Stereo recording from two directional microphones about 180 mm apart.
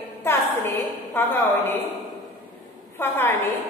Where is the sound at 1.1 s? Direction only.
10° left (ahead or behind).